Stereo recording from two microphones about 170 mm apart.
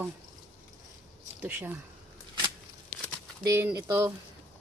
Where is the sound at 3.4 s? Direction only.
20° right (ahead or behind).